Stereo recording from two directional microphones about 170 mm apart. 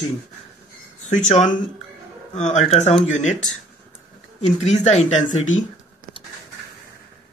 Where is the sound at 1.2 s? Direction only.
40° left (ahead or behind).